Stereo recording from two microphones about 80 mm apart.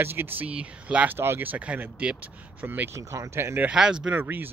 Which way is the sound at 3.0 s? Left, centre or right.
Right.